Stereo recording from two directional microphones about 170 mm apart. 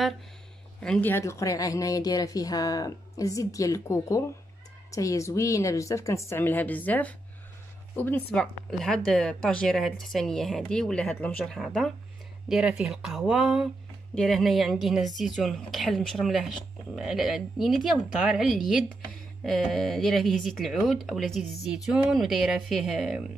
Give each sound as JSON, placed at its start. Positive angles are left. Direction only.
{"t": 0.8, "sound": "a woman's voice", "side_deg": 10}